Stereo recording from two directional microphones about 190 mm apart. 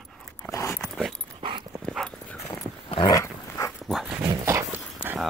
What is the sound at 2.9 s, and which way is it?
Dog, 25° left (ahead or behind).